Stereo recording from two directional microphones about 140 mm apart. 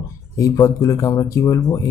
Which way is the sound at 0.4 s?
25° left (ahead or behind).